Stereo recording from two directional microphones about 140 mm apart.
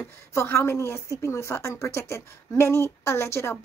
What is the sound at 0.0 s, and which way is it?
A woman's voice, 20° left (ahead or behind).